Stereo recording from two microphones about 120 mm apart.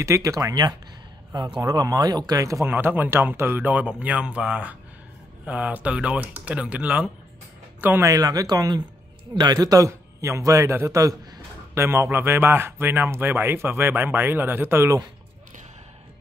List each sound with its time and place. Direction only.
0.0 s speech: 25° right (ahead or behind); by 7.1 s 10° right (ahead or behind)
8.0 s speech: 30° right (ahead or behind)